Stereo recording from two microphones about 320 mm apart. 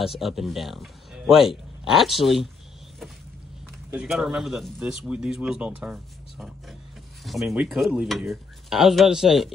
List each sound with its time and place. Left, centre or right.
0.0 s speech: centre
3.9 s speech: centre